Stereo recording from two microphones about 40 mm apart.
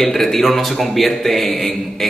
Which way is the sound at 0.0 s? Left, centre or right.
Centre.